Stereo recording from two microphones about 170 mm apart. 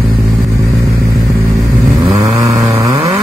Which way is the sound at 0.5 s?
20° right (ahead or behind).